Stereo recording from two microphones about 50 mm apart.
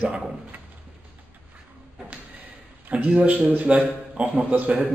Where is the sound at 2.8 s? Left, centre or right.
Right.